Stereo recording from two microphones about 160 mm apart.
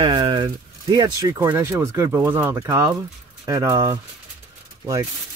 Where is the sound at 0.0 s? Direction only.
30° right (ahead or behind).